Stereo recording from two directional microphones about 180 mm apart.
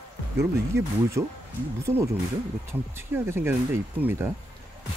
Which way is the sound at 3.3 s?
10° right (ahead or behind).